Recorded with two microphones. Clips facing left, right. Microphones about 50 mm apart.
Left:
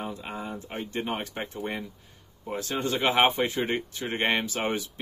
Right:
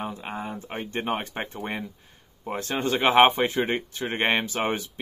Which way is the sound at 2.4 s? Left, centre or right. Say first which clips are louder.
Right 2 dB; right.